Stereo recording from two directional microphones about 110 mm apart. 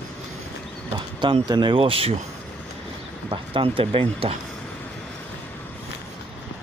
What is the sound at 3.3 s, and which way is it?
Speech, 50° right (ahead or behind).